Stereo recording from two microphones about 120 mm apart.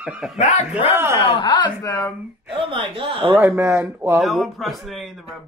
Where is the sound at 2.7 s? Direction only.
50° right (ahead or behind).